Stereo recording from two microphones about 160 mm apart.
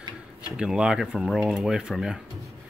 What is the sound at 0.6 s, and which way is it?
Speech, 5° right (ahead or behind).